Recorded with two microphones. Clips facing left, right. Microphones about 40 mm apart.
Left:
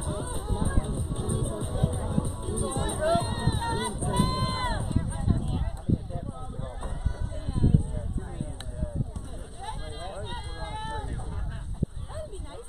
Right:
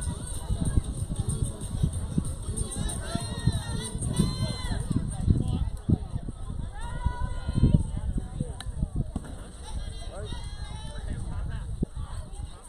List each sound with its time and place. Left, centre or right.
0.0 s music: left
6.8 s a sound: right
9.7 s run: left